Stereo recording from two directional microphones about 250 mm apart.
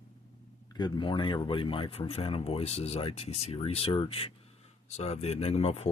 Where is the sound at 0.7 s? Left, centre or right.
Centre.